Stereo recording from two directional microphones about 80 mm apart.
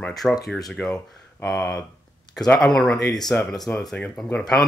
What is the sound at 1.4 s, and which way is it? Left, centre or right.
Speech, left.